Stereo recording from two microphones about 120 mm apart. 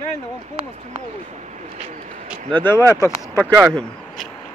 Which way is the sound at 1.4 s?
80° right.